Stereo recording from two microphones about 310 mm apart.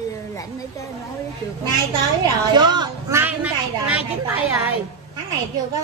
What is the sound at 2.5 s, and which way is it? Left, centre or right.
A woman's voice, centre.